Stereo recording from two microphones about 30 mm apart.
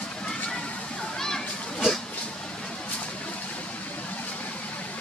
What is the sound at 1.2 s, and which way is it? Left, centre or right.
Children playing, centre.